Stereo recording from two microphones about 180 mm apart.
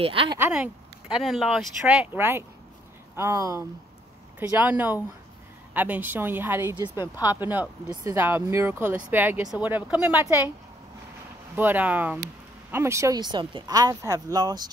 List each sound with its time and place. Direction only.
0.0 s speech: 30° right (ahead or behind)
0.4 s speech: 5° right (ahead or behind)
7.9 s speech: 15° right (ahead or behind)
11.5 s speech: 10° right (ahead or behind)